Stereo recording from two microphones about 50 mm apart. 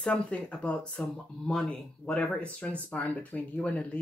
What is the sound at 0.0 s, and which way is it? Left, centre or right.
Speech, left.